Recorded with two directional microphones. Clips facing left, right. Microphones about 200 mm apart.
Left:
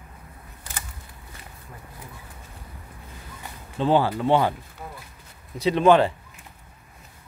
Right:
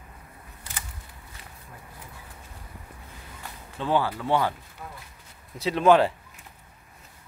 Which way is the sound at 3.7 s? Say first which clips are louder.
Left 5 dB; 30° left (ahead or behind).